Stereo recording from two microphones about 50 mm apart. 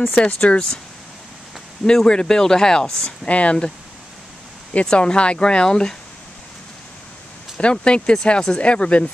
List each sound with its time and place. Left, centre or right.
0.4 s speech: centre
1.9 s speech: centre
3.3 s speech: left
4.8 s speech: left
7.5 s speech: centre